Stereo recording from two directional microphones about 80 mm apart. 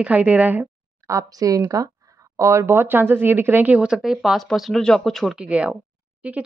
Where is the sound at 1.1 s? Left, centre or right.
Right.